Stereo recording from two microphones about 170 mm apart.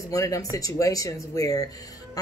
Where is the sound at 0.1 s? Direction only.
20° left (ahead or behind).